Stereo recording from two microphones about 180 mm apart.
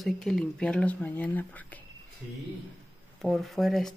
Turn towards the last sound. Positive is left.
turn(degrees=0)  # may be behind; listen again after turning